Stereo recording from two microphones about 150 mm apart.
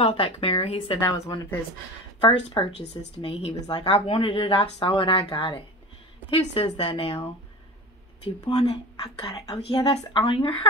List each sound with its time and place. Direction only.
0.0 s a woman's voice: 40° left (ahead or behind)
1.1 s a woman's voice: 20° left (ahead or behind); by 7.2 s 40° left (ahead or behind)
9.0 s a woman's voice: 30° left (ahead or behind)